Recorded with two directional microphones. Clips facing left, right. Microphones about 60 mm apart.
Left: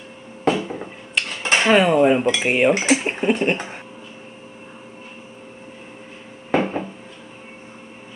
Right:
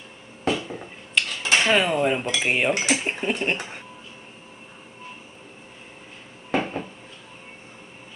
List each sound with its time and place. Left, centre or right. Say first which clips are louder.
0.5 s a sound: left 5 dB; left
1.4 s dishes: left 3 dB; left
1.7 s speech: left 9 dB; centre
2.7 s speech: left 5 dB; left
3.1 s a sound: left 6 dB; centre
6.5 s dishes: left 5 dB; left